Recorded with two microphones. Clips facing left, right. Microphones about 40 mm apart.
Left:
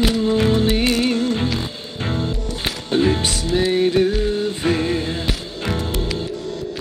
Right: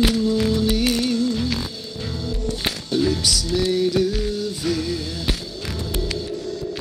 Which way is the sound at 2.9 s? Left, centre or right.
Left.